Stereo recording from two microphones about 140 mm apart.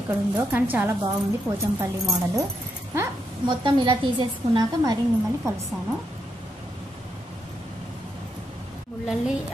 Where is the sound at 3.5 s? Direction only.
35° right (ahead or behind).